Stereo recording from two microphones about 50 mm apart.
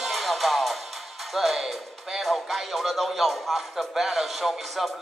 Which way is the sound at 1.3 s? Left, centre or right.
Centre.